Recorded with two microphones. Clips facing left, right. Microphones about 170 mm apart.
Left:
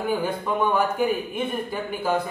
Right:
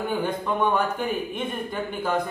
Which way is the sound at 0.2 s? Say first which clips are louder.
Even; 10° left (ahead or behind).